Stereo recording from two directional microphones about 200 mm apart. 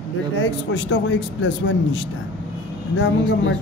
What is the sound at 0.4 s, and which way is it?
Speech, 65° left (ahead or behind).